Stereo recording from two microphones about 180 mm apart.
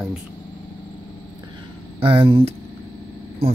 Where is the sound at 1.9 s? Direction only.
30° right (ahead or behind).